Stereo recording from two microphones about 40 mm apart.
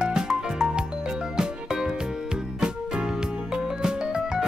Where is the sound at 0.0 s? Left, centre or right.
Centre.